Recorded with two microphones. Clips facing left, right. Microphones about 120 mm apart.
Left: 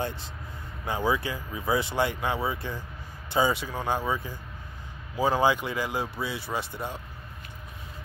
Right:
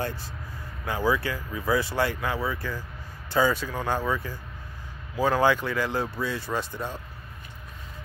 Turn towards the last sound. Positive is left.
turn(degrees=15)  # may be behind; listen again after turning